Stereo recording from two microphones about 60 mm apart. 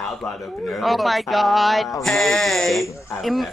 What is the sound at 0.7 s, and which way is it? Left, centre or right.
Speech, centre.